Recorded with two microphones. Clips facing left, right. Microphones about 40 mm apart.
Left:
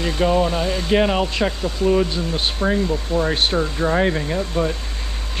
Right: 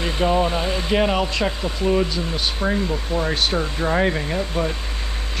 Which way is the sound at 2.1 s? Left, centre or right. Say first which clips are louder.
Left 1 dB; left.